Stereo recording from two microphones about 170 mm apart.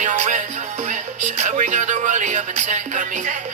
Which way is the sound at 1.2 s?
45° right (ahead or behind).